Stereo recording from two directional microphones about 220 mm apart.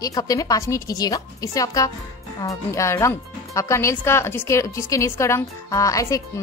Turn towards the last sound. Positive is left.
turn(degrees=15)  # may be behind; listen again after turning